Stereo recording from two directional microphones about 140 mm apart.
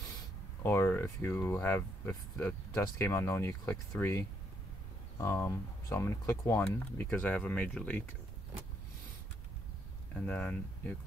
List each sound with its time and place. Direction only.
0.7 s speech: 15° left (ahead or behind)
10.2 s speech: 10° left (ahead or behind)